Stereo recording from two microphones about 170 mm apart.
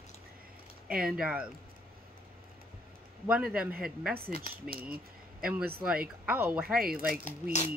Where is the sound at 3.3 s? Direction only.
5° right (ahead or behind).